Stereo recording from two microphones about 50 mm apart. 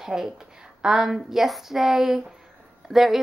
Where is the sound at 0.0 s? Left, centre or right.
Centre.